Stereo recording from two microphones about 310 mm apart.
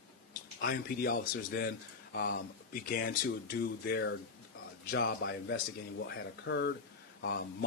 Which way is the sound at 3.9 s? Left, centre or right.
Left.